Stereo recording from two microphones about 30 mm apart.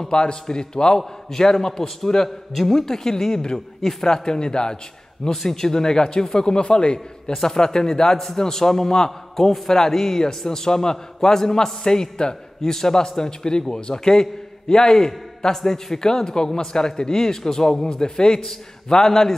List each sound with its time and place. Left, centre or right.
0.1 s a man's voice: left
15.5 s a man's voice: centre